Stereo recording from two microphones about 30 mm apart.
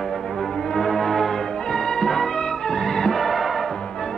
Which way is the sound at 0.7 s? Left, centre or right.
Centre.